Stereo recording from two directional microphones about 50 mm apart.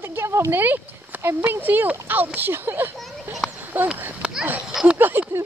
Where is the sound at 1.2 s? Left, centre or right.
Right.